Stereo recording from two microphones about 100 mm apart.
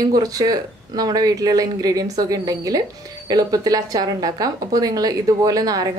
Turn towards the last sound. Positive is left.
turn(degrees=-40)  # may be behind; listen again after turning